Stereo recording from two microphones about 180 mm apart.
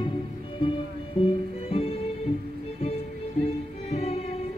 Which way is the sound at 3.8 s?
35° left (ahead or behind).